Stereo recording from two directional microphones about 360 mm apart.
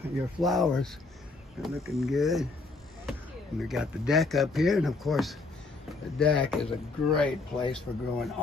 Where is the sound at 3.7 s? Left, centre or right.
Centre.